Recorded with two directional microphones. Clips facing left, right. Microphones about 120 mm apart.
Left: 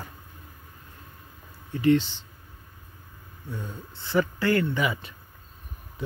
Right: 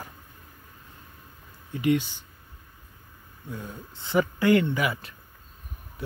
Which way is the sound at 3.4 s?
10° right (ahead or behind).